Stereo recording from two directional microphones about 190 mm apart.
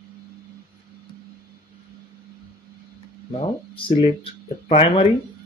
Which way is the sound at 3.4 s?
30° left (ahead or behind).